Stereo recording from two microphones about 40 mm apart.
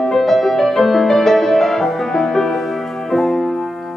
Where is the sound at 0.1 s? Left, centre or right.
Centre.